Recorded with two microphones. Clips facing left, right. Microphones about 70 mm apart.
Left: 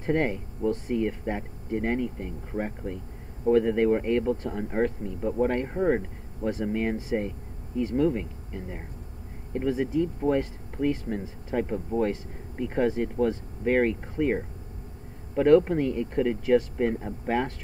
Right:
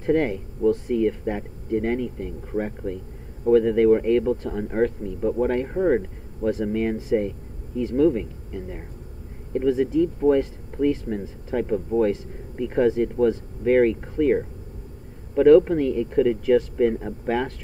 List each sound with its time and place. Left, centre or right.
0.0 s speech: centre